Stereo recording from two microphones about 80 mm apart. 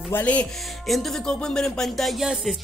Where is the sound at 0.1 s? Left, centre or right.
Centre.